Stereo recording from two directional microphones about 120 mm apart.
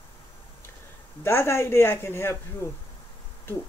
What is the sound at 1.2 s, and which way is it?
Speech, 20° left (ahead or behind).